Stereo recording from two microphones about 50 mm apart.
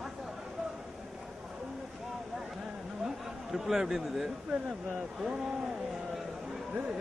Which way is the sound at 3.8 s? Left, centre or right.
Centre.